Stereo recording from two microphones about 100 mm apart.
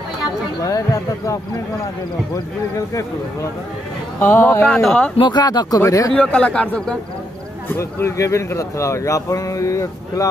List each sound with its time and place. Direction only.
0.7 s speech: 35° left (ahead or behind)
4.2 s a man's voice: 25° left (ahead or behind)
4.6 s a man's voice: 10° left (ahead or behind)
5.3 s speech: 45° left (ahead or behind)
6.1 s a man's voice: 10° left (ahead or behind)
7.7 s speech: 30° left (ahead or behind)